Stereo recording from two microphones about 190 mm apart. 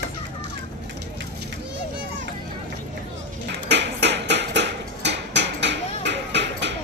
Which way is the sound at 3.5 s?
65° right (ahead or behind).